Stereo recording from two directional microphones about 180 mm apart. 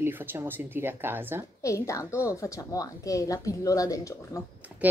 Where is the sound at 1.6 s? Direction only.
15° left (ahead or behind).